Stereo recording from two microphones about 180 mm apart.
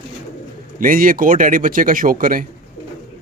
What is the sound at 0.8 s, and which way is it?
A man's voice, 50° right (ahead or behind).